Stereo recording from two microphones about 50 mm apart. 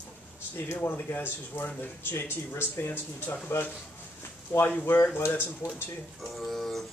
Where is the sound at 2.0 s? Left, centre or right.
Left.